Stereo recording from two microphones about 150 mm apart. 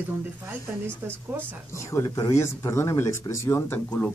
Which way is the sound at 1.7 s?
20° left (ahead or behind).